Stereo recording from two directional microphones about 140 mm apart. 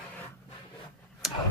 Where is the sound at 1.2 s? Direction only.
5° right (ahead or behind).